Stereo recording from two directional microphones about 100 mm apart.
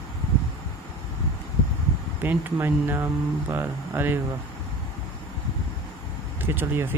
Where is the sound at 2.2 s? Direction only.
20° right (ahead or behind).